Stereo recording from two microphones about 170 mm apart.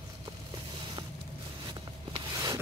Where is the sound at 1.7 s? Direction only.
25° right (ahead or behind).